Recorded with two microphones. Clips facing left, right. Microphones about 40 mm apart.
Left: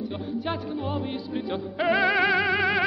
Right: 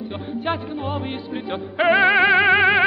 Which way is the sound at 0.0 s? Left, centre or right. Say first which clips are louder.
Right 3 dB; right.